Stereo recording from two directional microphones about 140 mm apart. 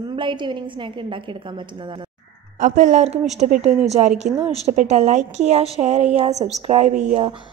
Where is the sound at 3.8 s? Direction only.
50° right (ahead or behind).